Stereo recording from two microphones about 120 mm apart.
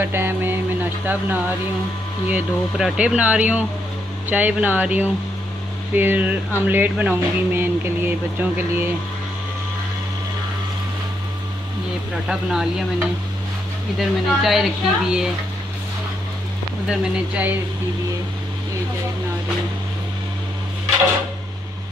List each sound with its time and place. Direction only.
0.0 s a sound: 20° right (ahead or behind)
2.2 s speech: 10° right (ahead or behind)
12.3 s speech: 5° right (ahead or behind)
13.9 s speech: centre (ahead or behind)
16.8 s speech: 5° right (ahead or behind)